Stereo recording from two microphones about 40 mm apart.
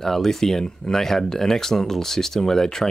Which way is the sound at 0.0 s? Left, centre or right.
Centre.